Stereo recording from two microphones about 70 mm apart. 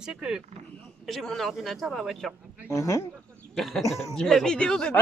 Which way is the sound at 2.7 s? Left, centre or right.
Left.